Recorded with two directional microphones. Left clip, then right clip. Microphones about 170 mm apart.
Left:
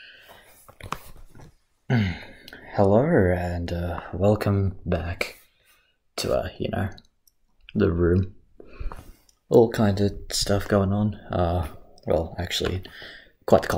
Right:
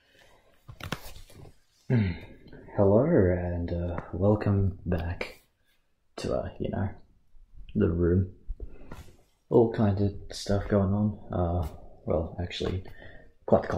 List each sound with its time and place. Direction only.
1.9 s speech: 15° left (ahead or behind)
9.5 s speech: 15° left (ahead or behind)